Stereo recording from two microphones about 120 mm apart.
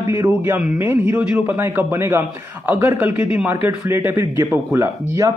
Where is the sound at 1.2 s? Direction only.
5° right (ahead or behind).